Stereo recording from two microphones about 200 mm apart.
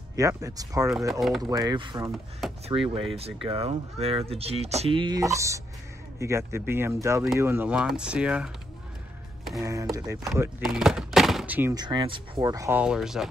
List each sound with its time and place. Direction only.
0.1 s speech: 15° right (ahead or behind)
9.6 s speech: 15° right (ahead or behind)
10.6 s a sound: centre (ahead or behind)
11.7 s speech: 20° right (ahead or behind); by 13.3 s centre (ahead or behind)